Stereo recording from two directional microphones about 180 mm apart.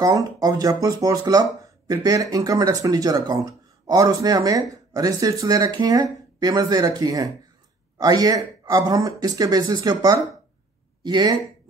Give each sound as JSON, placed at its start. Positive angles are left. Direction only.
{"t": 0.0, "sound": "speech", "side_deg": -20}